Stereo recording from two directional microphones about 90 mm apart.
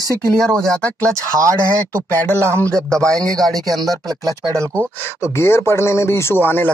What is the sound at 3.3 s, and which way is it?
Speech, 5° left (ahead or behind).